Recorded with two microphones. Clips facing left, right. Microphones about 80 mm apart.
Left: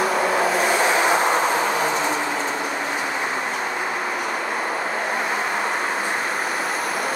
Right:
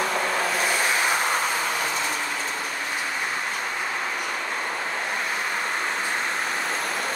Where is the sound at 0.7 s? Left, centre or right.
Left.